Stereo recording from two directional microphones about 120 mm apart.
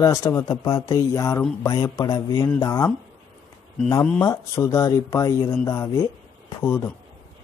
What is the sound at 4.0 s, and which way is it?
Speech, 25° left (ahead or behind).